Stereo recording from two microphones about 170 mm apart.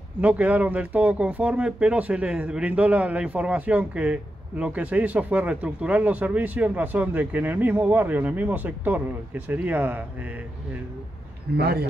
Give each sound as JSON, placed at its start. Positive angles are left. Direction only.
{"t": 0.2, "sound": "speech", "side_deg": -10}
{"t": 11.5, "sound": "speech", "side_deg": -70}